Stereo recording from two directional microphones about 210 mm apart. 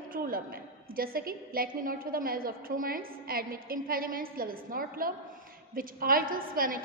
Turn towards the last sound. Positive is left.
turn(degrees=-40)  # may be behind; listen again after turning